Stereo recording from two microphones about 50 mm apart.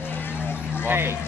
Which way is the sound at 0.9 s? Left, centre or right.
Right.